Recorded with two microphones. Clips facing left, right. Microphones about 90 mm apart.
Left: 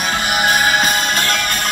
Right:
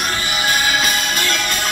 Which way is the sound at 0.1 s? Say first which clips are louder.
Left 4 dB; 65° left (ahead or behind).